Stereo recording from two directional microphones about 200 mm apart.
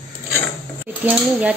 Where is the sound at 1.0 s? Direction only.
5° right (ahead or behind).